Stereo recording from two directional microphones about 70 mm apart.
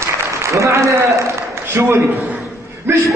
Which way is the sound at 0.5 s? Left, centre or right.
Right.